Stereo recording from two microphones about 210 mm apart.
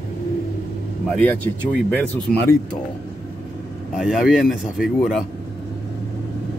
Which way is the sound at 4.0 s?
Centre (ahead or behind).